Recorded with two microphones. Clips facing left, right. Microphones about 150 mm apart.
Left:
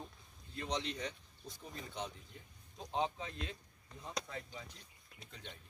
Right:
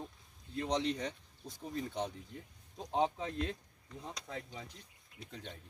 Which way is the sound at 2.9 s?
50° right (ahead or behind).